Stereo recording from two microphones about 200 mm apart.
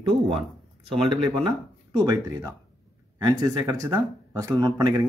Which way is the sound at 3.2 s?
20° right (ahead or behind).